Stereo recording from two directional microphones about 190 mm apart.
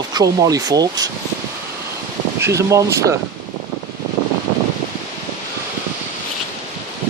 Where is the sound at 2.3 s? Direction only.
15° right (ahead or behind).